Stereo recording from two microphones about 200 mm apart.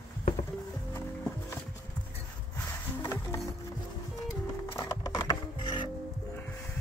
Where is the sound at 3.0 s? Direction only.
15° left (ahead or behind).